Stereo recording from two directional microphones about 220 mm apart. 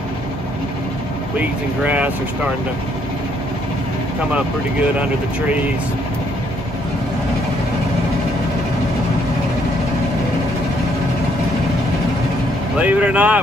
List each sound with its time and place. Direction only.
1.4 s speech: 5° right (ahead or behind)
12.7 s speech: 5° right (ahead or behind)